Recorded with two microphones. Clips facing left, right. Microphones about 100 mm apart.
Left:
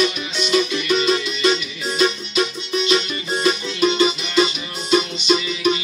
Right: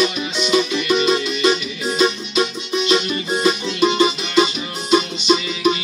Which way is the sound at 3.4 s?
30° right (ahead or behind).